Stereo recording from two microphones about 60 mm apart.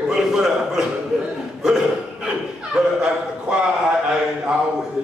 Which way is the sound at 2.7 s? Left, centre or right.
Centre.